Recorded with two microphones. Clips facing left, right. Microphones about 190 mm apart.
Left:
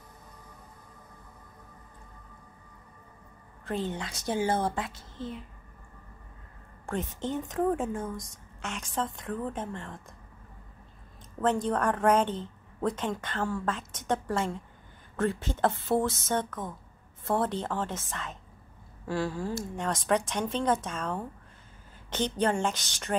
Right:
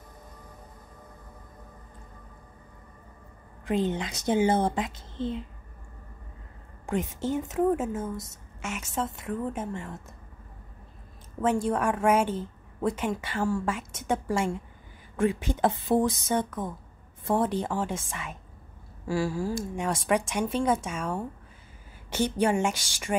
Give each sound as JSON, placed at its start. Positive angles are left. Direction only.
{"t": 3.6, "sound": "a woman's voice", "side_deg": -15}
{"t": 6.9, "sound": "a woman's voice", "side_deg": -10}
{"t": 11.4, "sound": "a woman's voice", "side_deg": -10}